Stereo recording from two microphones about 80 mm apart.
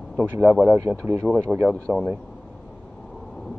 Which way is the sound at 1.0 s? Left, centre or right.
Right.